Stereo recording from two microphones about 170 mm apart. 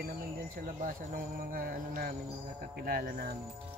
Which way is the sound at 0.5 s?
55° right (ahead or behind).